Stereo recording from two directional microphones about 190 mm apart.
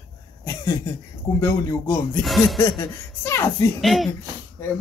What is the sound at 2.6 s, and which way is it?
Speech, 15° left (ahead or behind).